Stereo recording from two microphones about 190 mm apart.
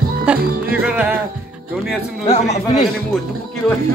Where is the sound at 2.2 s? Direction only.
35° left (ahead or behind).